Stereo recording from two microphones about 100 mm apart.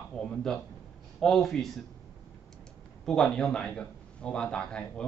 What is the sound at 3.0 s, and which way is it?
A man's voice, 5° left (ahead or behind).